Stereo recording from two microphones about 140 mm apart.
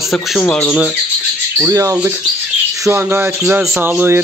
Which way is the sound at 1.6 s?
20° right (ahead or behind).